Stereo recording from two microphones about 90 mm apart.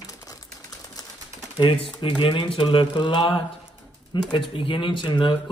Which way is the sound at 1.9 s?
65° left (ahead or behind).